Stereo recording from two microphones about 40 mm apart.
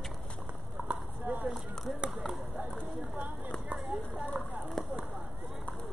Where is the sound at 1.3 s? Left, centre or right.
Right.